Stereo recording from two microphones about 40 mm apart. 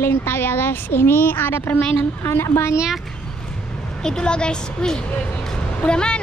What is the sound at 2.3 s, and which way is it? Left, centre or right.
Speech, left.